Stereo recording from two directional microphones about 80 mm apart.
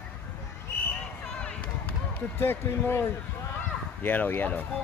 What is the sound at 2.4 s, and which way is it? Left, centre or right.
Speech, left.